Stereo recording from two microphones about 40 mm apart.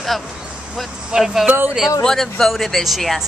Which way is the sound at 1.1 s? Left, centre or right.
Centre.